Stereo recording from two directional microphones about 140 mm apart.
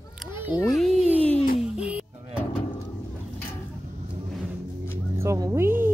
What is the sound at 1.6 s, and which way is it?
Music, 10° right (ahead or behind).